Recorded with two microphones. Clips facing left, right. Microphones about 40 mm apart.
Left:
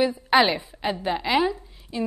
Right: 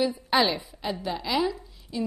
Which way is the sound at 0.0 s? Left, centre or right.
Left.